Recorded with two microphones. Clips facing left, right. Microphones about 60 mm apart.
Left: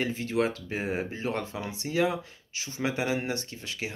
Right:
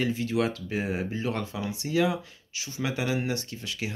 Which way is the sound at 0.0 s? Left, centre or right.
Left.